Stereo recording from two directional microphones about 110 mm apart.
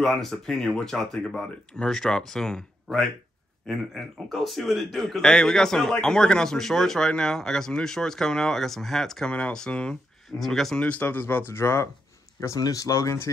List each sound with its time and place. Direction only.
0.0 s a man's voice: 5° left (ahead or behind); by 13.3 s 30° left (ahead or behind)